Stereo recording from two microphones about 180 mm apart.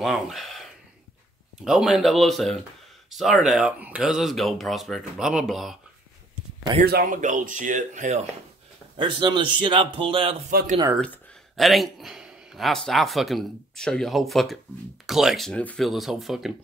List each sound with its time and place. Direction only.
0.0 s a man's voice: centre (ahead or behind)
6.9 s speech: 50° right (ahead or behind)
8.9 s a man's voice: 25° right (ahead or behind)
10.5 s speech: 55° right (ahead or behind)
11.5 s a man's voice: centre (ahead or behind)